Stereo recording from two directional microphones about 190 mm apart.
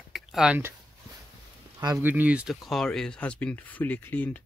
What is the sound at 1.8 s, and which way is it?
Speech, 15° right (ahead or behind).